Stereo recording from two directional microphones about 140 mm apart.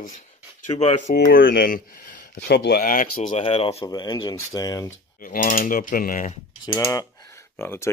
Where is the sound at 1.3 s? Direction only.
90° left; by 3.3 s 70° left (ahead or behind).